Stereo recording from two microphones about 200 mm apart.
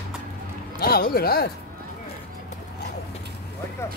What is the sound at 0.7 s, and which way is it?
Speech, 50° left (ahead or behind).